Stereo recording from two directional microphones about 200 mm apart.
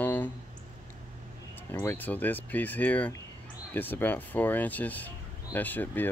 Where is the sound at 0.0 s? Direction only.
10° left (ahead or behind).